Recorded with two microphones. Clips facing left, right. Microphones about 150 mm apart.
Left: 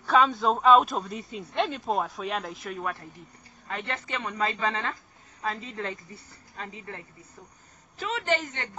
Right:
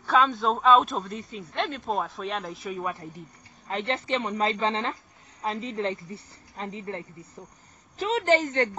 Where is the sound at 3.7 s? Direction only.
25° right (ahead or behind).